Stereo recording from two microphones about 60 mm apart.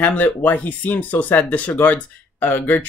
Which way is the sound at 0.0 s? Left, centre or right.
Left.